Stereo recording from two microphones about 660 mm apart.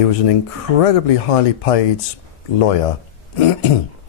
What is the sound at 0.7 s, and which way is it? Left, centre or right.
Speech, left.